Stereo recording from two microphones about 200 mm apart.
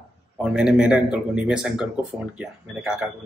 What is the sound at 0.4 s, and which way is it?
A man's voice, 5° right (ahead or behind).